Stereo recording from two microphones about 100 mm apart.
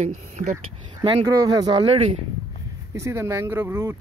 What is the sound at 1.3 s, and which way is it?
Speech, 45° right (ahead or behind).